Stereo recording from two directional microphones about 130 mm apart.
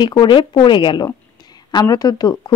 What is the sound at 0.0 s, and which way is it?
A woman's voice, 35° left (ahead or behind).